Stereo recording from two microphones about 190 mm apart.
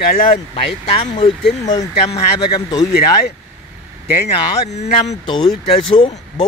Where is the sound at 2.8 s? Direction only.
55° left (ahead or behind).